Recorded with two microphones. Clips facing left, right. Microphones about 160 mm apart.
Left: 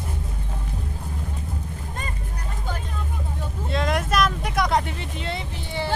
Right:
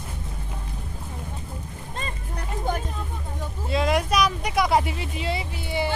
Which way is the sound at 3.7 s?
Centre (ahead or behind).